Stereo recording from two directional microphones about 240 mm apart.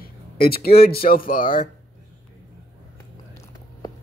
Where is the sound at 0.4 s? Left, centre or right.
Left.